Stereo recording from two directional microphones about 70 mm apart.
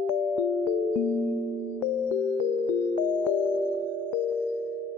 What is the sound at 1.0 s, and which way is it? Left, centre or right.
Music, left.